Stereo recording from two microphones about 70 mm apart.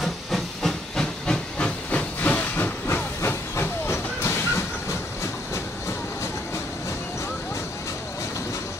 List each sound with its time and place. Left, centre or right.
0.0 s hiss: centre
1.9 s hiss: left
3.2 s steam: left